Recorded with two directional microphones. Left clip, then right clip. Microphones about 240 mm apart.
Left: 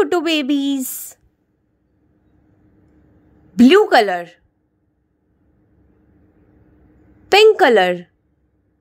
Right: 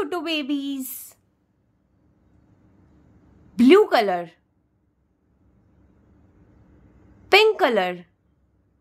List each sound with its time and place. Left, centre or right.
0.0 s a woman's voice: left
3.5 s a woman's voice: centre
7.2 s a woman's voice: centre